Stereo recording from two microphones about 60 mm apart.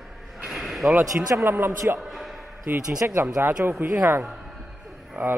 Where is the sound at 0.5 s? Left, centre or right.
Centre.